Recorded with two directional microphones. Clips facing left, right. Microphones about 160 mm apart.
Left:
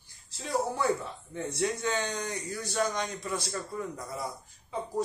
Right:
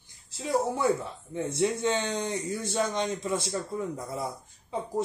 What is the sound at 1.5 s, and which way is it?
Speech, 25° right (ahead or behind).